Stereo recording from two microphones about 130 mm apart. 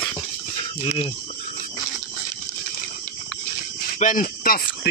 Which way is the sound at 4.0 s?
90° left.